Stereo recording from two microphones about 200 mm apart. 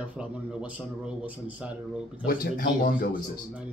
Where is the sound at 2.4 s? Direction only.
45° left (ahead or behind).